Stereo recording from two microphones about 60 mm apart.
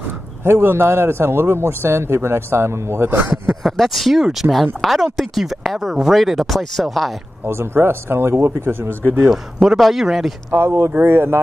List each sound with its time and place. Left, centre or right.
0.4 s a man's voice: right
3.2 s speech: right
3.6 s a woman's voice: centre
7.4 s a man's voice: right
9.2 s a woman's voice: centre
10.5 s a man's voice: right